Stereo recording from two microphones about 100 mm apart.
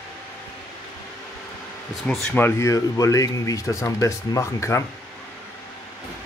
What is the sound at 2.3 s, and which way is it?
Speech, 25° left (ahead or behind).